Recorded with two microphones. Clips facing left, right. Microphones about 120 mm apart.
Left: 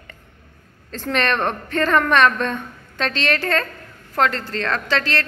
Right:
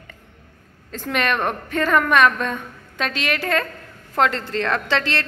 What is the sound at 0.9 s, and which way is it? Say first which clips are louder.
A woman's voice: left 1 dB; 10° right (ahead or behind).